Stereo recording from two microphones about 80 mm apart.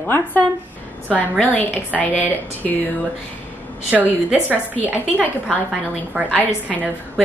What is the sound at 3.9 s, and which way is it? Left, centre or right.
A woman's voice, centre.